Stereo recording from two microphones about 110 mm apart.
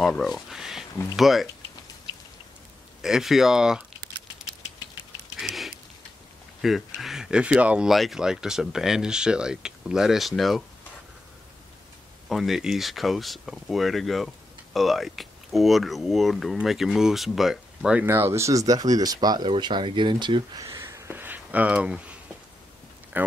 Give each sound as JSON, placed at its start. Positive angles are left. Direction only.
{"t": 0.0, "sound": "a sound", "side_deg": 5}
{"t": 1.1, "sound": "speech", "side_deg": 0}
{"t": 3.0, "sound": "speech", "side_deg": -5}
{"t": 5.4, "sound": "a sound", "side_deg": 0}
{"t": 6.6, "sound": "speech", "side_deg": 0}
{"t": 12.3, "sound": "speech", "side_deg": 0}
{"t": 18.0, "sound": "speech", "side_deg": -25}
{"t": 20.6, "sound": "a sound", "side_deg": -25}
{"t": 23.1, "sound": "speech", "side_deg": -15}